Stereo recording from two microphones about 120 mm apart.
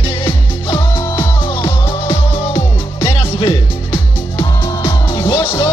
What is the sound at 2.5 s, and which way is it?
Music, 25° left (ahead or behind).